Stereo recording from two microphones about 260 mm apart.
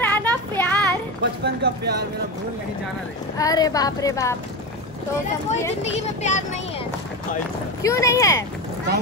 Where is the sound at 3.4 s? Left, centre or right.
Centre.